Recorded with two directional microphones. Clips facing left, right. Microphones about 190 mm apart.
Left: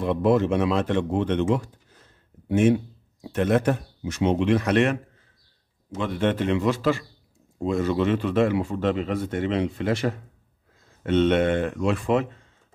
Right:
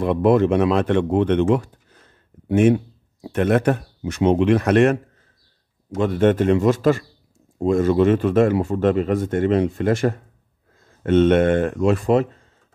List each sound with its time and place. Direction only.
0.0 s a man's voice: 60° right (ahead or behind); by 12.3 s 40° right (ahead or behind)